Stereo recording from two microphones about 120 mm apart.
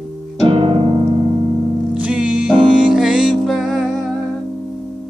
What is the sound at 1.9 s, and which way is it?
Music, 10° right (ahead or behind).